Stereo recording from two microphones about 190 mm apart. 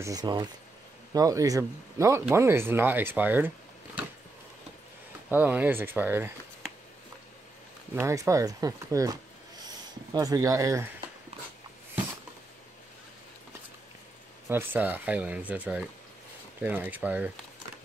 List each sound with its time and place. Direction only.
0.0 s speech: 20° right (ahead or behind)
5.3 s speech: 10° right (ahead or behind)
7.9 s speech: 15° right (ahead or behind)
14.5 s speech: 10° right (ahead or behind)